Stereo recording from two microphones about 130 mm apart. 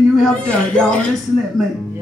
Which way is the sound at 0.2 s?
5° left (ahead or behind).